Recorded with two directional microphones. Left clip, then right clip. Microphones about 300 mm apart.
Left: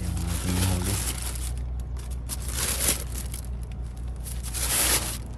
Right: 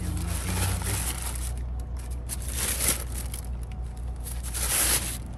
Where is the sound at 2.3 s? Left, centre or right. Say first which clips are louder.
Left 2 dB; centre.